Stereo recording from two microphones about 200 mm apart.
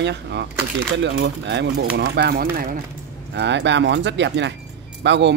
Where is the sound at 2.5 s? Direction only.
45° right (ahead or behind).